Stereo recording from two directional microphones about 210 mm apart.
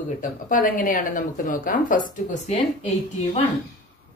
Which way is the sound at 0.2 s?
40° left (ahead or behind).